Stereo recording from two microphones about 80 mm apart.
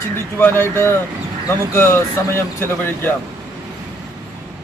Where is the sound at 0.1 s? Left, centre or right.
Left.